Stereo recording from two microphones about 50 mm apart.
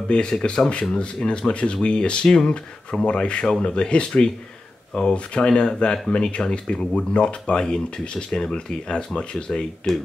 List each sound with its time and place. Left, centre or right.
0.1 s speech: centre